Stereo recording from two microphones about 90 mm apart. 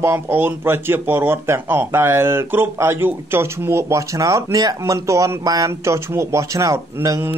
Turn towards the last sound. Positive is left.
turn(degrees=-35)  # may be behind; listen again after turning